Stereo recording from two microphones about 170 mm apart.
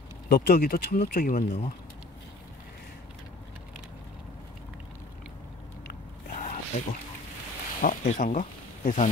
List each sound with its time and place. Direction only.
0.3 s speech: 60° left (ahead or behind)
6.3 s zipper: 50° left (ahead or behind)
7.8 s speech: 50° left (ahead or behind)